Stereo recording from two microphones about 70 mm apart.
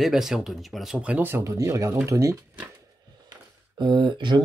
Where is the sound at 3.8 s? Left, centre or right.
Right.